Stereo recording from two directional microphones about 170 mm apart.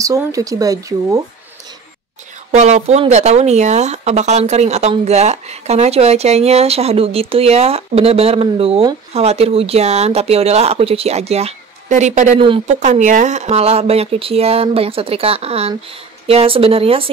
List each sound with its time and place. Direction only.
0.0 s speech: 20° right (ahead or behind)
2.5 s speech: 40° right (ahead or behind)
12.4 s speech: 30° right (ahead or behind)
12.8 s speech: 45° right (ahead or behind)